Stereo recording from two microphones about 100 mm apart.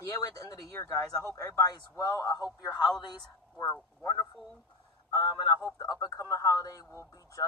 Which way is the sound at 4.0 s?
35° left (ahead or behind).